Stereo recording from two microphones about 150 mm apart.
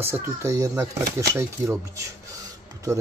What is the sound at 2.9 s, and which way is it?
Speech, 20° right (ahead or behind).